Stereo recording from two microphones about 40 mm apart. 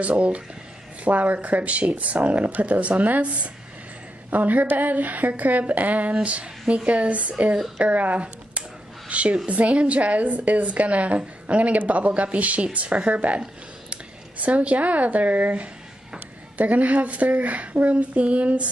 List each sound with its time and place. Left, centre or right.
0.0 s a woman's voice: right
14.4 s a woman's voice: right